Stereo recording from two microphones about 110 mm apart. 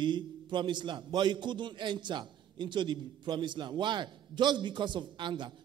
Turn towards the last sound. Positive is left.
turn(degrees=-45)  # may be behind; listen again after turning